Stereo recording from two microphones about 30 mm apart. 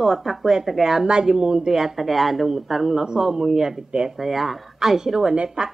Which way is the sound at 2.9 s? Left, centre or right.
Right.